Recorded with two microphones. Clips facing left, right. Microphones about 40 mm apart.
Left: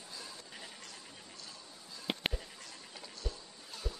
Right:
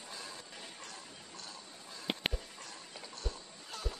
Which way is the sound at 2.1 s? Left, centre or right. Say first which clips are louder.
Even; centre.